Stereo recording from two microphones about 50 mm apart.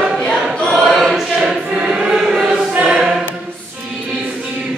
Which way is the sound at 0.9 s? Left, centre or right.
Centre.